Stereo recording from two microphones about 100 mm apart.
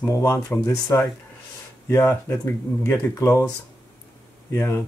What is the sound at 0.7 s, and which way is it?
Speech, 40° left (ahead or behind).